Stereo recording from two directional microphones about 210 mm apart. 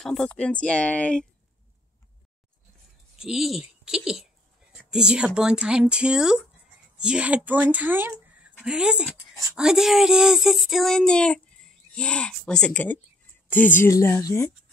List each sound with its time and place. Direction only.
0.0 s speech: 5° left (ahead or behind)
3.2 s speech: centre (ahead or behind); by 14.5 s 15° left (ahead or behind)